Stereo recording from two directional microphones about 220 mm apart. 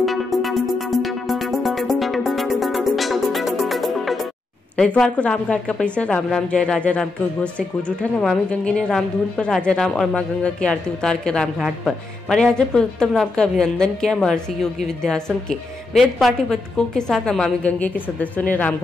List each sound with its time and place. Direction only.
0.0 s music: centre (ahead or behind)
4.7 s a woman's voice: 5° left (ahead or behind)